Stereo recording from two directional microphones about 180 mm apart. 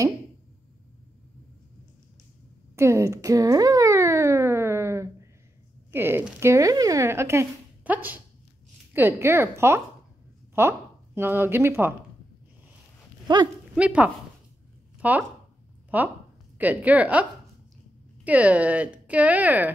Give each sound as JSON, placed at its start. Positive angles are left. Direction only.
{"t": 2.7, "sound": "a sound", "side_deg": -15}
{"t": 5.9, "sound": "speech", "side_deg": -15}
{"t": 13.3, "sound": "speech", "side_deg": -25}
{"t": 13.7, "sound": "speech", "side_deg": -10}